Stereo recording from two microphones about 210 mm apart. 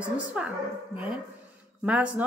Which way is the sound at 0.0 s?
5° right (ahead or behind).